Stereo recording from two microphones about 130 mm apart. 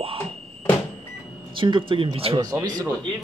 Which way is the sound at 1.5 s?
40° right (ahead or behind).